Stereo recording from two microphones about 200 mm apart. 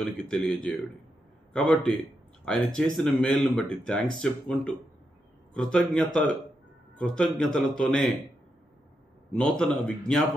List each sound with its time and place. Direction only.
0.0 s a man's voice: 5° left (ahead or behind)
9.3 s speech: 5° left (ahead or behind)